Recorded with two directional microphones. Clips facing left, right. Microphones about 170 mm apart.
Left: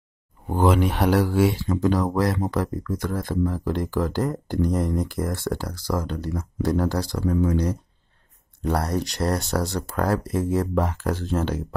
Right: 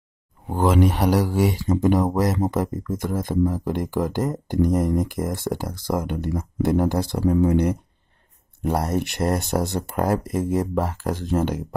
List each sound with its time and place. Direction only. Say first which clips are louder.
0.5 s speech: right 1 dB; centre (ahead or behind)
4.6 s speech: right 4 dB; 45° right (ahead or behind)
4.9 s speech: right 2 dB; 15° right (ahead or behind)
8.6 s speech: right 1 dB; 25° right (ahead or behind)
10.7 s speech: even; 5° right (ahead or behind)